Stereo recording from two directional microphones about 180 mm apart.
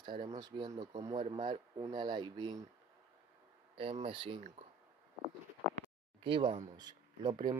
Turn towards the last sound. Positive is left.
turn(degrees=-25)  # may be behind; listen again after turning